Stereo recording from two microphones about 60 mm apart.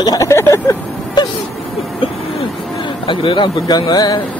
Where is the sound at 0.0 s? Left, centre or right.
Left.